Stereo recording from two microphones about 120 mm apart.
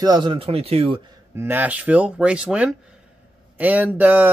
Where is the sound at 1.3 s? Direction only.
20° right (ahead or behind).